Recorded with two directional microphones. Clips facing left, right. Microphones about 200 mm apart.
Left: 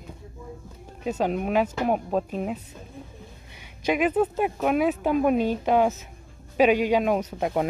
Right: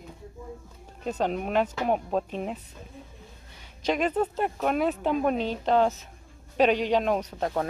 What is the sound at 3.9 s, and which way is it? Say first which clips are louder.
Speech: left 3 dB; 5° left (ahead or behind).